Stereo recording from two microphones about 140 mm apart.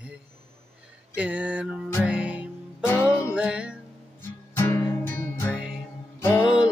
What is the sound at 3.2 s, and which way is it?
Music, 10° right (ahead or behind).